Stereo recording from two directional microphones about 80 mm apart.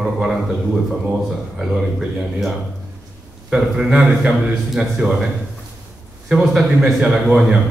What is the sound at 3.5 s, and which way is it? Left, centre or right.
A man's voice, centre.